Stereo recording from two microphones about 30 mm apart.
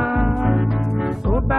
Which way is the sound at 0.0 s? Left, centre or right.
Centre.